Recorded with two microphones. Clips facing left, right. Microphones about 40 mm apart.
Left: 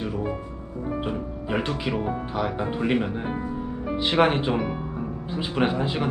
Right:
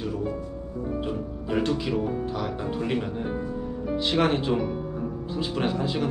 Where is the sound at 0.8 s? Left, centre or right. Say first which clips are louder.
Left 2 dB; left.